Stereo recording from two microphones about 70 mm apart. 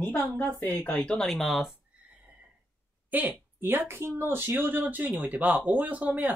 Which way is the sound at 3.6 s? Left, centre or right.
Right.